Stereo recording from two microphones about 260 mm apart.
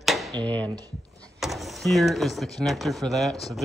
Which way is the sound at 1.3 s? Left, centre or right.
Centre.